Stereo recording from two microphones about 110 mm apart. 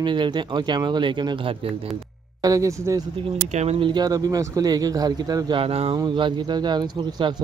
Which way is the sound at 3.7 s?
45° right (ahead or behind).